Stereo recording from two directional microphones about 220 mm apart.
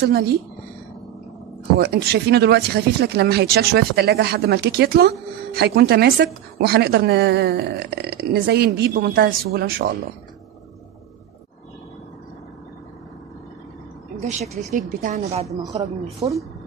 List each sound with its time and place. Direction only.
0.1 s speech: 45° right (ahead or behind)
1.8 s speech: 45° right (ahead or behind)
14.7 s speech: 35° right (ahead or behind)
15.4 s a woman's voice: 15° right (ahead or behind)